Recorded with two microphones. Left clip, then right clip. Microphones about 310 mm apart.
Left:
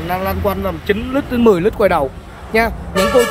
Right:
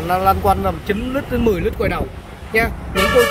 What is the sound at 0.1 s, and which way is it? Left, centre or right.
Speech, centre.